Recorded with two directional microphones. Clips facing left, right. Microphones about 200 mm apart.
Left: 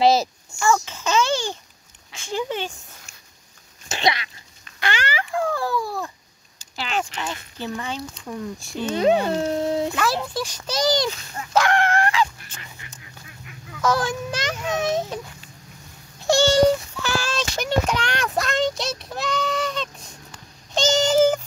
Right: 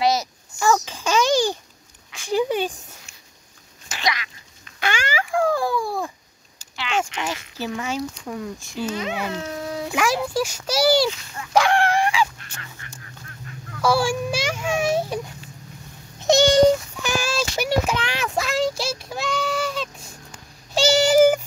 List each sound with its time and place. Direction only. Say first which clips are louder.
0.0 s a child's voice: left 4 dB; 30° left (ahead or behind)
0.6 s a child's voice: right 1 dB; 15° right (ahead or behind)
3.9 s cat: left 4 dB; 30° left (ahead or behind)
4.7 s babbling: right 1 dB; 10° right (ahead or behind)
6.8 s speech: right 1 dB; 40° left (ahead or behind)
7.2 s a child's voice: right 2 dB; 10° right (ahead or behind)
8.9 s speech: left 14 dB; 35° left (ahead or behind)
9.9 s a child's voice: right 3 dB; 10° right (ahead or behind)
11.5 s fowl: right 1 dB; 10° right (ahead or behind)
12.6 s goose: right 2 dB; 15° left (ahead or behind)
13.7 s a sound: right 2 dB; 10° right (ahead or behind)
16.2 s child singing: right 2 dB; 20° right (ahead or behind)